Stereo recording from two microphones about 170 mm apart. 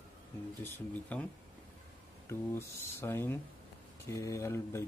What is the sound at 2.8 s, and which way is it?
Speech, 15° left (ahead or behind).